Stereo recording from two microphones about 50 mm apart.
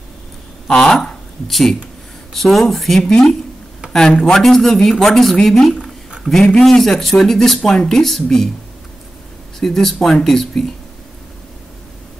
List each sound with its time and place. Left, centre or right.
0.7 s a woman's voice: centre
9.6 s a woman's voice: centre